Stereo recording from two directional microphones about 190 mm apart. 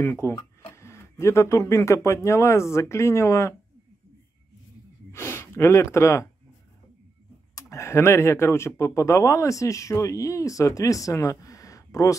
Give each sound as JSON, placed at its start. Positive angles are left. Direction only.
{"t": 0.0, "sound": "speech", "side_deg": 15}
{"t": 5.1, "sound": "speech", "side_deg": 10}
{"t": 7.5, "sound": "speech", "side_deg": 15}